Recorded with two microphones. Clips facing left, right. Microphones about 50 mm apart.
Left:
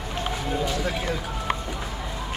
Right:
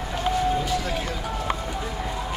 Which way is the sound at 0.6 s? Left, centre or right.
Centre.